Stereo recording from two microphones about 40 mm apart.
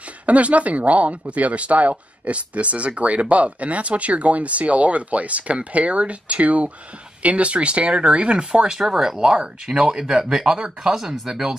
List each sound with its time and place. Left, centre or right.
0.3 s speech: right
8.7 s speech: centre